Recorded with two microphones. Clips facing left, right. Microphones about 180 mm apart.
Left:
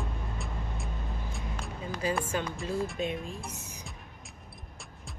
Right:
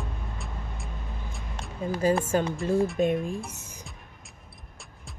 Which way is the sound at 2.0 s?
45° right (ahead or behind).